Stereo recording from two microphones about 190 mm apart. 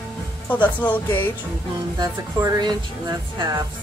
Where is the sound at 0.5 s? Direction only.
10° left (ahead or behind).